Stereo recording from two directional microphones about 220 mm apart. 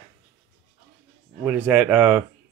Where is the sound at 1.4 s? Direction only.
5° right (ahead or behind).